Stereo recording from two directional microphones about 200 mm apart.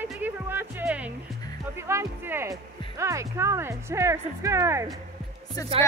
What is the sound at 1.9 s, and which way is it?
Speech, 15° right (ahead or behind).